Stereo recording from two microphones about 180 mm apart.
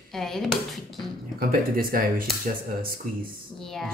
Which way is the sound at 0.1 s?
Centre (ahead or behind).